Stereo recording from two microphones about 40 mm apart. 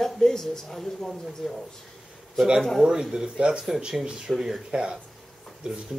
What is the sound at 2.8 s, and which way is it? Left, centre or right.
Speech, centre.